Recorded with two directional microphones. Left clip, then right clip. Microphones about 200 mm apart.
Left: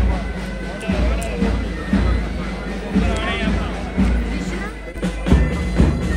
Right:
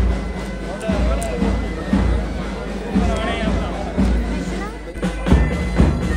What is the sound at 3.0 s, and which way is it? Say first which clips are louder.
Music: right 1 dB; 50° right (ahead or behind).